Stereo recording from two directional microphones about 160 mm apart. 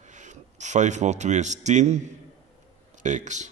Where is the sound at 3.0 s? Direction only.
50° right (ahead or behind).